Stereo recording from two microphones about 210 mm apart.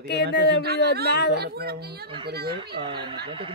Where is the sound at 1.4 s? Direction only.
50° right (ahead or behind).